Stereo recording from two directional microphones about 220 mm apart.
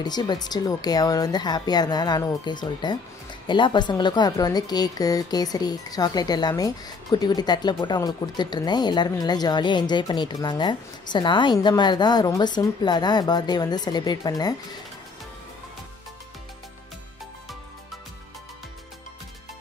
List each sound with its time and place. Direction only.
0.0 s a woman's voice: 20° left (ahead or behind)